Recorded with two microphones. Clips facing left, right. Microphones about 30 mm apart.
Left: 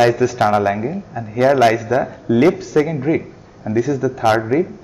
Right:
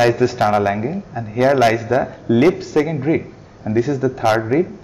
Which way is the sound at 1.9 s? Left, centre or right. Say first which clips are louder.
Even; right.